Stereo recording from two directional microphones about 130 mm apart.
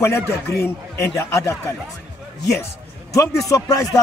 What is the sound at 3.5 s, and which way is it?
Speech, 25° left (ahead or behind).